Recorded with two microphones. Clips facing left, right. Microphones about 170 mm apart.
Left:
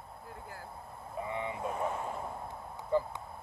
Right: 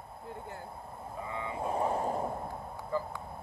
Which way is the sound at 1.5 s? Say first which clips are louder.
Right 4 dB; 30° right (ahead or behind).